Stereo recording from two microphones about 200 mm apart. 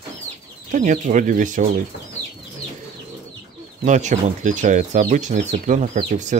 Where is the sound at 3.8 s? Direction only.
35° right (ahead or behind).